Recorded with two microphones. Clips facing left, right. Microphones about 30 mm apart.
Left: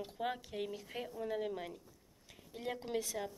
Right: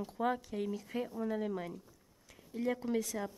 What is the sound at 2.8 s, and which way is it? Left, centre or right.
Speech, left.